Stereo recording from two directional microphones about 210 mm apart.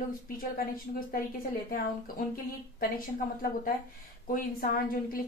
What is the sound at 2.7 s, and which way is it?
A woman's voice, 40° left (ahead or behind).